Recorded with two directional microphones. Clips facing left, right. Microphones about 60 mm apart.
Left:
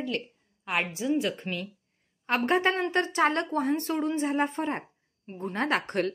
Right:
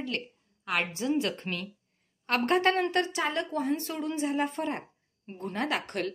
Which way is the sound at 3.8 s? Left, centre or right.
Left.